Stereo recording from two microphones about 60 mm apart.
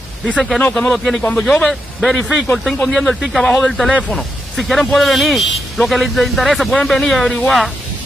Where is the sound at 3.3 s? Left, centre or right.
Centre.